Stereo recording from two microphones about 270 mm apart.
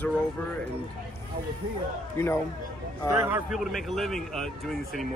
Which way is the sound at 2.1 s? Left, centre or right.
Centre.